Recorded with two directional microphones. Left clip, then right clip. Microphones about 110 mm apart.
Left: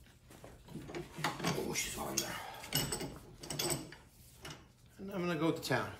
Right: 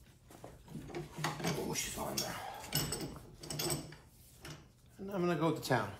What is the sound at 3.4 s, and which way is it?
Mechanisms, 10° right (ahead or behind).